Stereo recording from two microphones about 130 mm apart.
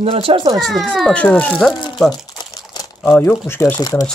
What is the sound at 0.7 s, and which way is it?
Speech, centre (ahead or behind).